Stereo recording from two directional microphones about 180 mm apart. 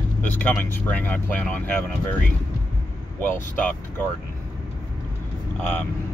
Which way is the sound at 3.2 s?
10° left (ahead or behind).